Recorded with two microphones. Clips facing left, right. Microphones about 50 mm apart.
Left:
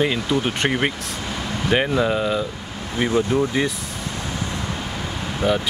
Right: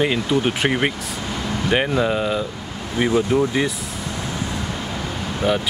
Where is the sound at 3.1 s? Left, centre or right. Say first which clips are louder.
Right 1 dB; right.